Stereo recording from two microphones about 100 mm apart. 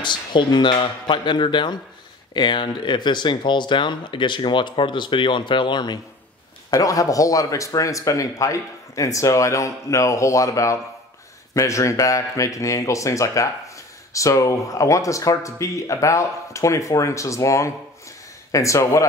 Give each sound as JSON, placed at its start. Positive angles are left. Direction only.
{"t": 0.0, "sound": "speech", "side_deg": 50}
{"t": 6.7, "sound": "speech", "side_deg": 35}